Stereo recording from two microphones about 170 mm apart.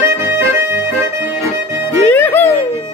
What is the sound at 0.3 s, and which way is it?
Accordion, 10° right (ahead or behind).